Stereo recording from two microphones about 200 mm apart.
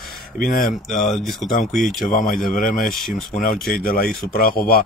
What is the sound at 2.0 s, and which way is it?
Speech, 45° left (ahead or behind).